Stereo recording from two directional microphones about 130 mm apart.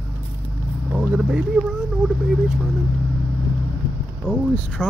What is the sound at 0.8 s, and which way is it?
Speech, 10° right (ahead or behind).